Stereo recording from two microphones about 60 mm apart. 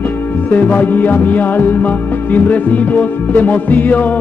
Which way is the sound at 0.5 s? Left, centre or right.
Left.